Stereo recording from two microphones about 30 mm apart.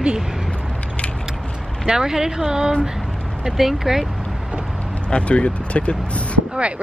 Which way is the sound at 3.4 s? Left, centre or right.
Centre.